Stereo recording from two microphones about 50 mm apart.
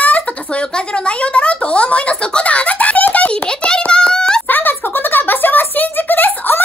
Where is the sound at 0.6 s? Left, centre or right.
Centre.